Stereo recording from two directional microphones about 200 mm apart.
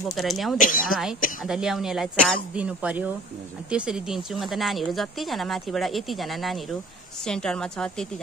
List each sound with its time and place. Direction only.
0.1 s speech: centre (ahead or behind)
0.6 s speech: 40° left (ahead or behind)
1.4 s speech: centre (ahead or behind)